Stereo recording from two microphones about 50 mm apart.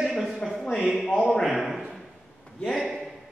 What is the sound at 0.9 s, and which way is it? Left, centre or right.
Speech, centre.